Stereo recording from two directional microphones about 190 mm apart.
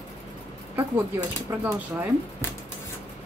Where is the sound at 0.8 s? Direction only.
10° right (ahead or behind).